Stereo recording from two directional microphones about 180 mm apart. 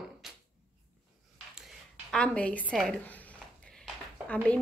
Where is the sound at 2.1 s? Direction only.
5° left (ahead or behind).